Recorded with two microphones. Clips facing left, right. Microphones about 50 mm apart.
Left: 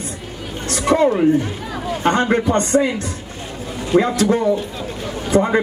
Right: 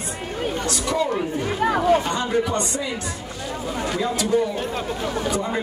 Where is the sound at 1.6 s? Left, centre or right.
Right.